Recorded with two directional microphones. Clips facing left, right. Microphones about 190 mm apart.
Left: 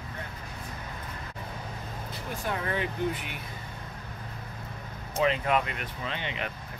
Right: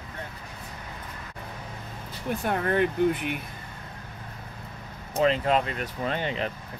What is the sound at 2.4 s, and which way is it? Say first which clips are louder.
Speech: right 6 dB; 55° right (ahead or behind).